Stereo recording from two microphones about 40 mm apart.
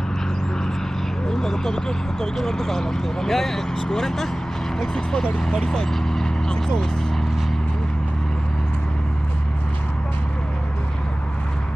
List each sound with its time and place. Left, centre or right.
1.3 s speech: centre
6.5 s speech: centre